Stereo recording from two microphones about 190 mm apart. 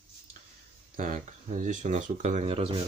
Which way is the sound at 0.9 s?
40° right (ahead or behind).